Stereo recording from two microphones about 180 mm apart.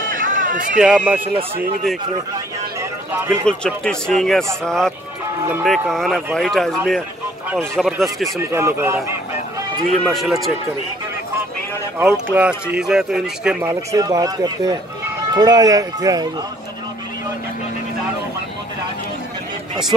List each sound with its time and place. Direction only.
0.1 s a sound: 50° right (ahead or behind)
0.7 s speech: 5° right (ahead or behind)
3.3 s speech: 5° left (ahead or behind)
8.4 s speech: 15° right (ahead or behind)
10.0 s speech: centre (ahead or behind)
12.0 s speech: 10° right (ahead or behind)